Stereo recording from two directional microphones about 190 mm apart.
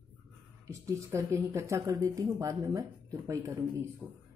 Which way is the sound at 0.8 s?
15° right (ahead or behind).